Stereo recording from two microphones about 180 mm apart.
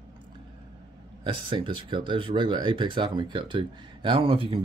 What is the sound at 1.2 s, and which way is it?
Speech, 30° right (ahead or behind).